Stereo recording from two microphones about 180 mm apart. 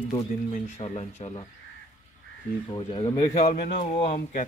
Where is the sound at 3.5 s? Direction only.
55° left (ahead or behind).